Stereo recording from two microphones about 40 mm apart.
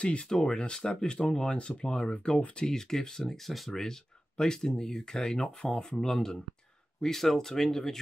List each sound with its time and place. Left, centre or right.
0.0 s speech: left; by 3.8 s centre
3.8 s speech: centre